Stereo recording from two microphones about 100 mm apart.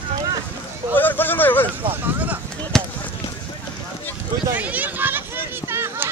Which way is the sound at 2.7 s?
5° left (ahead or behind).